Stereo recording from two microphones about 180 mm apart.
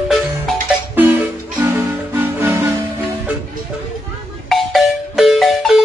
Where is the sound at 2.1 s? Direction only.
15° right (ahead or behind).